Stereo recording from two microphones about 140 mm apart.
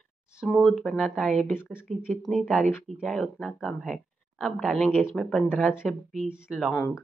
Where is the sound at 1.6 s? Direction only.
15° left (ahead or behind).